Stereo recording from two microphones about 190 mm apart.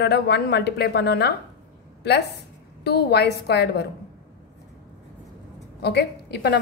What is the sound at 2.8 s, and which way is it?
A woman's voice, 60° left (ahead or behind).